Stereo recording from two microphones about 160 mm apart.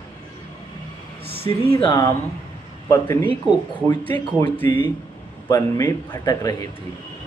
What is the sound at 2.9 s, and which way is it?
Speech, 15° left (ahead or behind).